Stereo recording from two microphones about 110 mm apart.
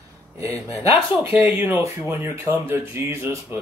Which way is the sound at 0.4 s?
30° right (ahead or behind).